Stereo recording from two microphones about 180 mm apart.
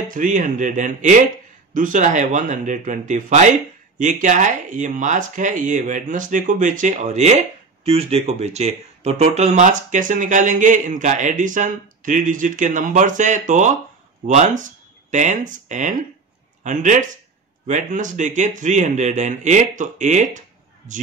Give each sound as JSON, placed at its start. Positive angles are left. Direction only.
{"t": 0.1, "sound": "speech", "side_deg": -45}